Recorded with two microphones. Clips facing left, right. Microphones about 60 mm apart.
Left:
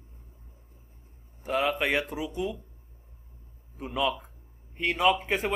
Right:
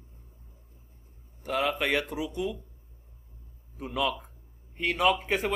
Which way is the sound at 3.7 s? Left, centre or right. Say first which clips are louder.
Left 1 dB; centre.